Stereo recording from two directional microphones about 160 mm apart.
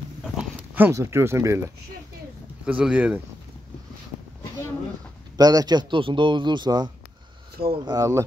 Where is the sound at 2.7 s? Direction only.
5° right (ahead or behind).